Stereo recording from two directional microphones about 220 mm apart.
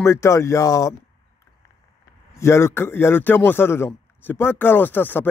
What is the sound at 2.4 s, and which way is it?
Speech, 10° left (ahead or behind).